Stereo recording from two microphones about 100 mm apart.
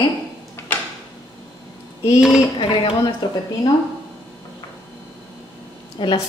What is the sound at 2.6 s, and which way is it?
Speech, 55° left (ahead or behind).